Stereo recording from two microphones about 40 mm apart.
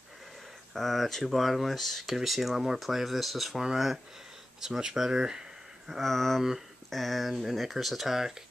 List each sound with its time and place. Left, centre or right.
0.7 s speech: centre
5.9 s speech: centre